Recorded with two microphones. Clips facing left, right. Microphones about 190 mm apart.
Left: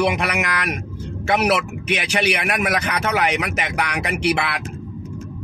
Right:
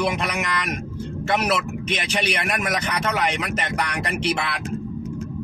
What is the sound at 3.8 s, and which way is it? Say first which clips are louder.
Speech: left 2 dB; 75° left (ahead or behind).